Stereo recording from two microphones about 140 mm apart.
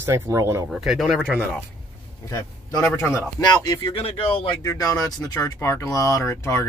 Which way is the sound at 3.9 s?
40° left (ahead or behind).